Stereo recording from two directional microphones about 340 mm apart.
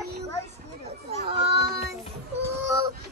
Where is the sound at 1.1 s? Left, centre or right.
Centre.